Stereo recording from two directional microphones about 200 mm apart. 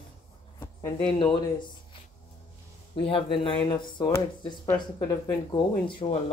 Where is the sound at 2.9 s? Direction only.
25° left (ahead or behind).